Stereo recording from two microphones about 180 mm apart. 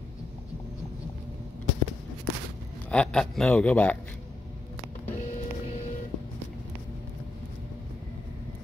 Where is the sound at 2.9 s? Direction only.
5° left (ahead or behind).